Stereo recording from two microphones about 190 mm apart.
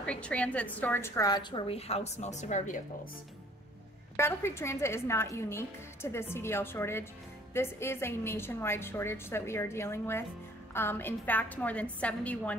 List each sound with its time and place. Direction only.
0.0 s a woman's voice: 5° left (ahead or behind); by 2.8 s 40° left (ahead or behind)
4.2 s a woman's voice: 15° left (ahead or behind)